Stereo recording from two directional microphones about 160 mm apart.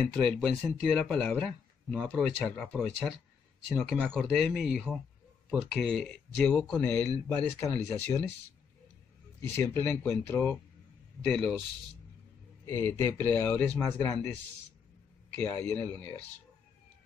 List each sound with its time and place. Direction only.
0.1 s speech: 5° left (ahead or behind); by 5.9 s 10° right (ahead or behind)
5.9 s speech: 5° left (ahead or behind)
9.4 s speech: 15° left (ahead or behind)
12.6 s speech: 15° left (ahead or behind)
15.3 s speech: 10° left (ahead or behind)